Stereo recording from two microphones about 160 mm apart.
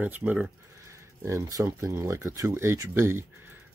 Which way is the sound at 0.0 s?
10° right (ahead or behind).